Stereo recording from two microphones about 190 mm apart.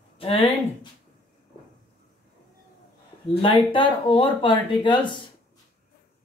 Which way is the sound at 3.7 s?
25° left (ahead or behind).